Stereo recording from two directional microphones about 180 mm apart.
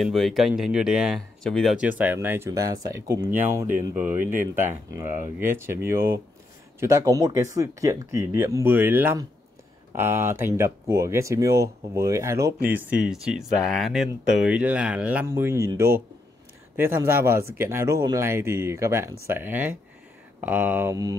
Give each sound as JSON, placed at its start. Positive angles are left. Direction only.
{"t": 0.0, "sound": "speech", "side_deg": 0}